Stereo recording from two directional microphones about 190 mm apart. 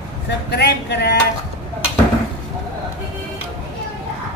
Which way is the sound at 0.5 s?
60° left (ahead or behind).